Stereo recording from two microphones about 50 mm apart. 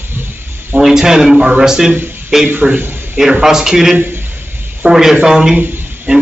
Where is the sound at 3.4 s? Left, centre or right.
Centre.